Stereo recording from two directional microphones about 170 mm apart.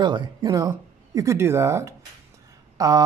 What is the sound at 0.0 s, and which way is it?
Speech, 25° right (ahead or behind).